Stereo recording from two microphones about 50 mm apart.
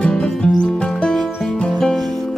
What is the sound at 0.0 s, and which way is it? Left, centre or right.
Music, centre.